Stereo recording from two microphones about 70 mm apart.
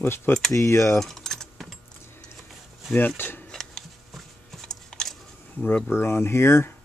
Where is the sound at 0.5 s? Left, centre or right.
Left.